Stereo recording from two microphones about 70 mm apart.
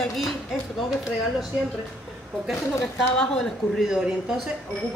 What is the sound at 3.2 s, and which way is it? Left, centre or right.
Speech, centre.